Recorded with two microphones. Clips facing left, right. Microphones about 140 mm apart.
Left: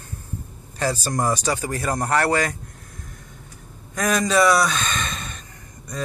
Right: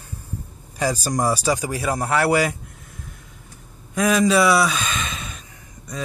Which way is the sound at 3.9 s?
5° right (ahead or behind).